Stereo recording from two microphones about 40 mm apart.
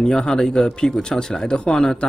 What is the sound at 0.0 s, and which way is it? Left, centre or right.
Speech, centre.